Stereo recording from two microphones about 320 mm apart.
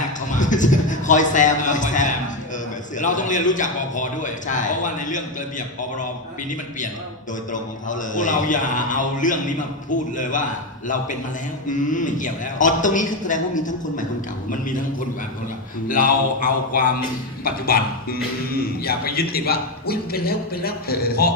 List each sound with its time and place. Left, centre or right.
0.3 s speech: left
7.5 s speech: left
15.9 s speech: left